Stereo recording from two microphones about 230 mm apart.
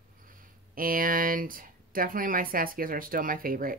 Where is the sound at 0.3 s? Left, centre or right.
Right.